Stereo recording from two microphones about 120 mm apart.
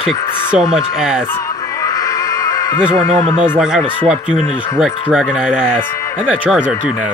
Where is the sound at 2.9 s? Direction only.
55° right (ahead or behind).